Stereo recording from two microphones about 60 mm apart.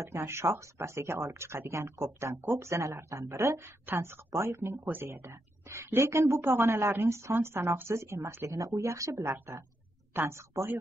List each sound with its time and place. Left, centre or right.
0.0 s speech: right
3.8 s speech: right
4.3 s speech: right
8.5 s speech: right